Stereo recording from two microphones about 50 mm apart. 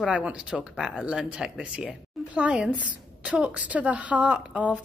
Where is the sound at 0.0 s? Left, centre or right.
Right.